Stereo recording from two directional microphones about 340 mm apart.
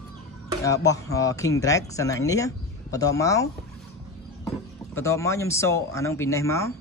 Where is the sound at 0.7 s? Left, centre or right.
Centre.